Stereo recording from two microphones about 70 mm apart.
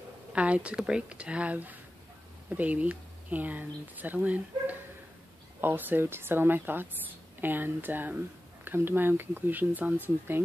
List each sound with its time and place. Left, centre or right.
0.3 s speech: centre